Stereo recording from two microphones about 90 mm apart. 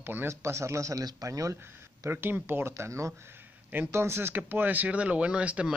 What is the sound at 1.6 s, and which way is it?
Speech, 25° right (ahead or behind).